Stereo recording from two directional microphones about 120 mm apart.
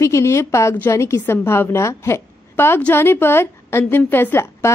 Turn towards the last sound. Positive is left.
turn(degrees=20)  # may be behind; listen again after turning